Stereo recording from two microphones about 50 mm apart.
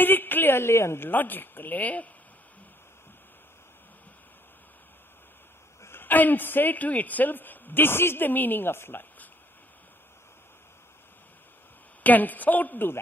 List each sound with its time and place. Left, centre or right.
0.0 s a sound: left
1.0 s a man's voice: left
5.9 s a man's voice: left
8.3 s a woman's voice: left
12.0 s a man's voice: left